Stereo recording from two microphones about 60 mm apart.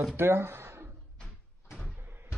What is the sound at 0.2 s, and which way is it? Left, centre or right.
Speech, right.